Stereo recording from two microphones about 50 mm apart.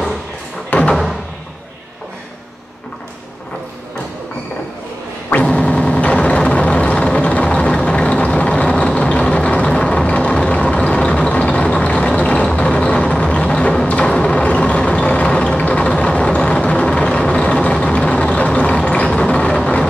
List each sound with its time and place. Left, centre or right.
0.7 s a sound: left
5.5 s vehicle: left
12.4 s music: centre
14.0 s vehicle: centre
19.0 s vehicle: centre